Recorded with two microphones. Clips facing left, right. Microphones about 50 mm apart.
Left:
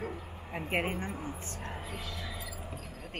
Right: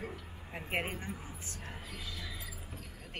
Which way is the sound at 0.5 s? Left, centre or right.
Centre.